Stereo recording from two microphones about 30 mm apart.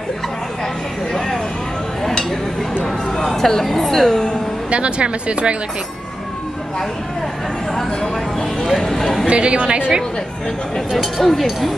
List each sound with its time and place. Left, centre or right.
3.3 s a woman's voice: centre
4.6 s speech: right
9.0 s speech: centre
9.3 s a woman's voice: right
10.9 s speech: centre